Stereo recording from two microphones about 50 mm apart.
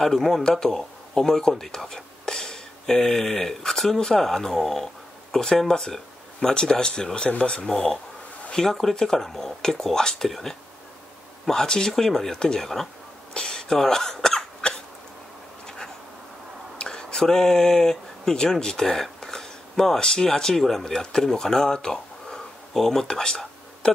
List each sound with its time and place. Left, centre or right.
0.0 s speech: centre
13.3 s hiccup: centre
16.7 s speech: centre